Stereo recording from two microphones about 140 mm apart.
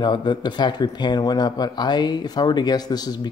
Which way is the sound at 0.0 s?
35° left (ahead or behind).